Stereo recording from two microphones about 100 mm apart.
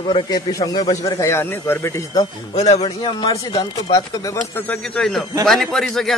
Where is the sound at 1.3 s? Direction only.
20° left (ahead or behind).